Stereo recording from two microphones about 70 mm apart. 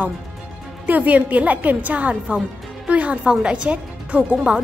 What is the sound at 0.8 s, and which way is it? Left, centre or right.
A woman's voice, right.